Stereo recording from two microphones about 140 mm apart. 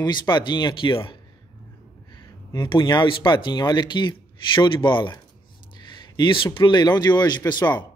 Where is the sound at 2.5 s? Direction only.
35° left (ahead or behind).